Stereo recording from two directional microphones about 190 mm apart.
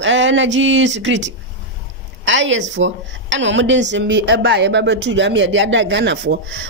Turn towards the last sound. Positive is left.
turn(degrees=-65)  # may be behind; listen again after turning